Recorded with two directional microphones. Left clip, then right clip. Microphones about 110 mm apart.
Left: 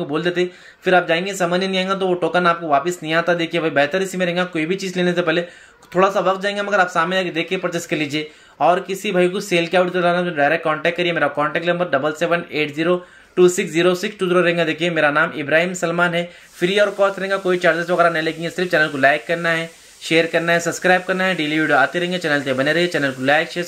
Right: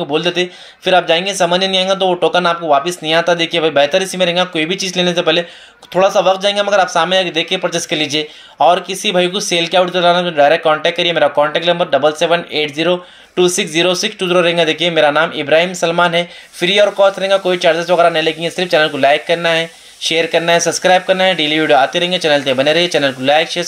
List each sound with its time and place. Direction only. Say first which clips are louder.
0.0 s speech: right 5 dB; 15° right (ahead or behind)